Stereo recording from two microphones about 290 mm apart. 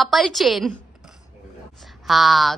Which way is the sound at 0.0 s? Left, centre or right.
Centre.